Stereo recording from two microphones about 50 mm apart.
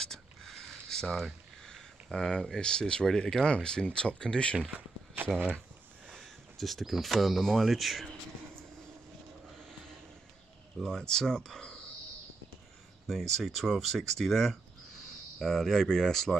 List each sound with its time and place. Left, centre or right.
0.0 s speech: centre
4.6 s a sound: right
6.1 s speech: centre
10.8 s speech: centre
13.3 s speech: centre